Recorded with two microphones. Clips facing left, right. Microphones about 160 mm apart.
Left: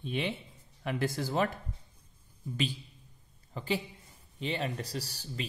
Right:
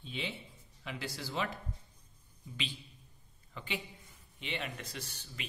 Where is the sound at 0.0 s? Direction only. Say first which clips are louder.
Left 7 dB; 60° left (ahead or behind).